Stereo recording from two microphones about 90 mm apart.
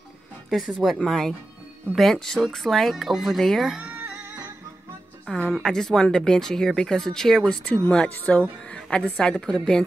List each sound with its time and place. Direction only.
0.5 s speech: centre (ahead or behind)
3.9 s music: 15° right (ahead or behind)
5.5 s a woman's voice: 5° left (ahead or behind)